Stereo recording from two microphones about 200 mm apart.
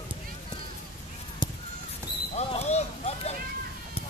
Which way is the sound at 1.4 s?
25° left (ahead or behind).